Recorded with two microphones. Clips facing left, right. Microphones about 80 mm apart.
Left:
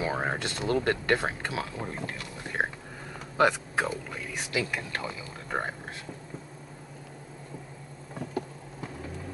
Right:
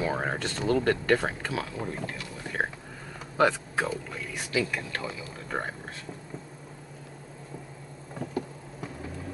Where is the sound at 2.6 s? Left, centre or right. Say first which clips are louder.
Even; centre.